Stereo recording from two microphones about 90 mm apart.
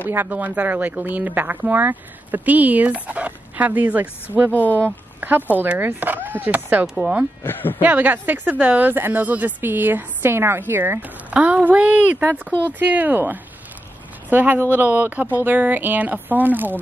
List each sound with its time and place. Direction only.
0.1 s a woman's voice: 20° right (ahead or behind)
4.5 s speech: 20° left (ahead or behind)
4.7 s a woman's voice: 20° right (ahead or behind)